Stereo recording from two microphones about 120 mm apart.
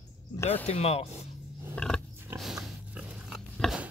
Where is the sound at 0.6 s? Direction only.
60° left (ahead or behind).